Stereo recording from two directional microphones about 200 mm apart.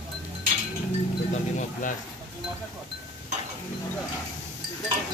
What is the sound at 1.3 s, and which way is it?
Music, 40° left (ahead or behind).